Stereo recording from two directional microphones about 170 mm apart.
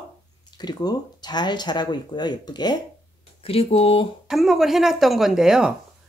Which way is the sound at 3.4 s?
35° left (ahead or behind).